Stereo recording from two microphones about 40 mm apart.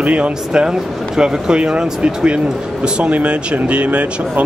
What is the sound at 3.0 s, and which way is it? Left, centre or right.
Speech, right.